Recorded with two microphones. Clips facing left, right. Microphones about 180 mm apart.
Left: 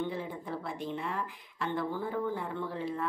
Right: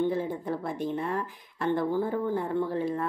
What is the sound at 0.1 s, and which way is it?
Speech, 45° right (ahead or behind).